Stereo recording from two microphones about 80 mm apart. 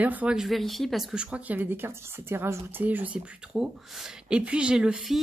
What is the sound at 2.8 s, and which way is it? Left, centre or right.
Speech, centre.